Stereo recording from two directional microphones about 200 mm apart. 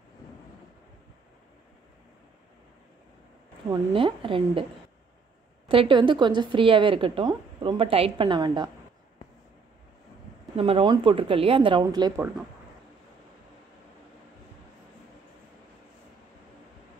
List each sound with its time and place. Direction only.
3.7 s a woman's voice: 25° right (ahead or behind)
5.7 s a woman's voice: 25° right (ahead or behind)
10.5 s a woman's voice: 30° right (ahead or behind)